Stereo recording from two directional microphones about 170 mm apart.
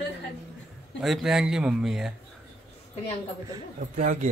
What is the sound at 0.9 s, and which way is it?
Speech, centre (ahead or behind).